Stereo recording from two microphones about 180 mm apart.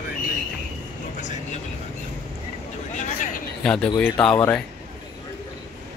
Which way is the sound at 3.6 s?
5° left (ahead or behind).